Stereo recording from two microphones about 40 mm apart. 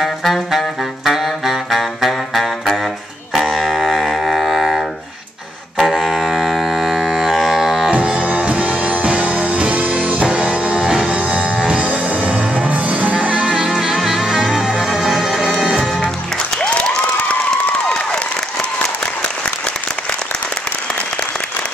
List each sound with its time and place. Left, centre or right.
0.0 s saxophone: centre
3.3 s music: centre
7.9 s music: right
10.2 s music: right; by 14.2 s centre
14.2 s music: right
15.0 s music: centre